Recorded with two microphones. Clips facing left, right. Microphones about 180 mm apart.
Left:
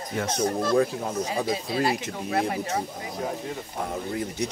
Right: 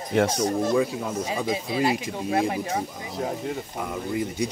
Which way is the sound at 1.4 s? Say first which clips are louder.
Right 3 dB; 15° right (ahead or behind).